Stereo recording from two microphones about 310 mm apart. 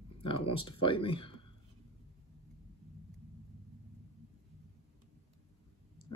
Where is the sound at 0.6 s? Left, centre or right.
Centre.